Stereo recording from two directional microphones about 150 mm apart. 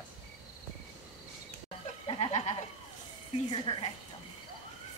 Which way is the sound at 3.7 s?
35° left (ahead or behind).